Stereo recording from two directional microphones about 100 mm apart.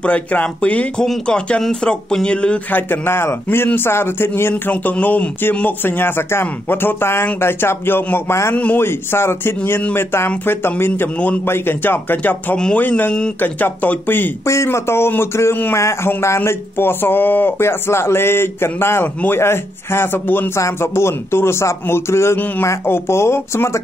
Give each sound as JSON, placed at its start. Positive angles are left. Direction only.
{"t": 0.0, "sound": "speech", "side_deg": 15}